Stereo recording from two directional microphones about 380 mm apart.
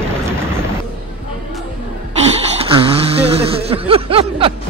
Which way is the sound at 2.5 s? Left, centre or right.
Centre.